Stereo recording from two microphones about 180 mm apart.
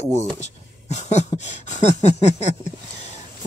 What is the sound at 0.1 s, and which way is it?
Speech, 40° left (ahead or behind).